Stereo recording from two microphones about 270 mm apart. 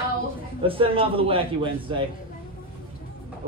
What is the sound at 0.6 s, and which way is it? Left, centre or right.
A man's voice, centre.